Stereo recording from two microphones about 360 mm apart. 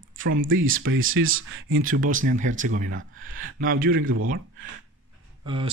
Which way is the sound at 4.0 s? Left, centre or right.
Right.